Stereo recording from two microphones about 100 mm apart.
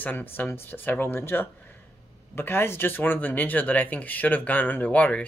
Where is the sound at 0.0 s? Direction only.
20° left (ahead or behind).